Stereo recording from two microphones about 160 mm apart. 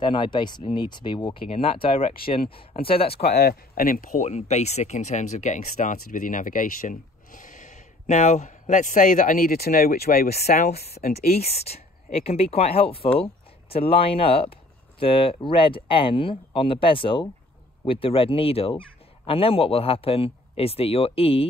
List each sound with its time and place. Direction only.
0.0 s speech: 30° left (ahead or behind)
3.1 s speech: 75° left (ahead or behind)
11.3 s speech: 40° left (ahead or behind)